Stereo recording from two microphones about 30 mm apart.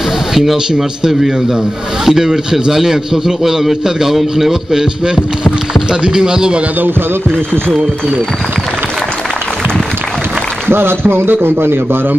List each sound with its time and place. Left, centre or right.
0.3 s a man's voice: centre; by 6.6 s right